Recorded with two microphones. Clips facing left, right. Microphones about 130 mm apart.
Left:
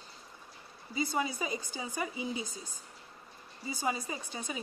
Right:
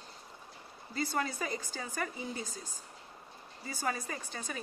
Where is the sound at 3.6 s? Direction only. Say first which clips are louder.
Left 2 dB; 15° left (ahead or behind).